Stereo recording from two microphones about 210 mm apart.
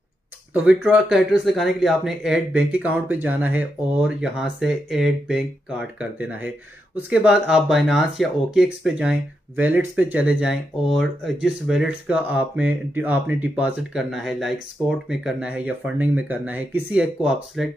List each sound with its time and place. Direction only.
0.5 s speech: 5° right (ahead or behind)